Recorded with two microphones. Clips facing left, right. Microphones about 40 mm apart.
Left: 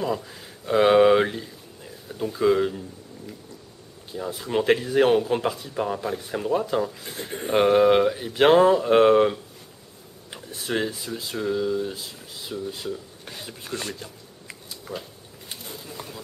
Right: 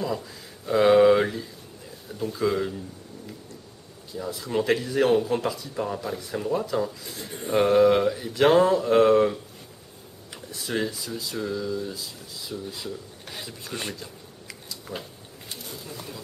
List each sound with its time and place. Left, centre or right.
0.1 s speech: left
4.1 s speech: left
8.9 s speech: left
13.9 s a sound: left
15.7 s speech: centre